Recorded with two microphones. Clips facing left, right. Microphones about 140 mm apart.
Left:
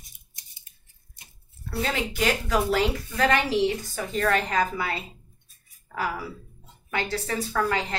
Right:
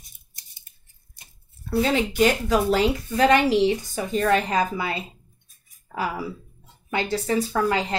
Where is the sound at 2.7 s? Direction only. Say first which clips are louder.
Right 4 dB; 15° right (ahead or behind).